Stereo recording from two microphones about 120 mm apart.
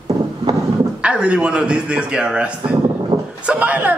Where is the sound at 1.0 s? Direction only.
10° right (ahead or behind).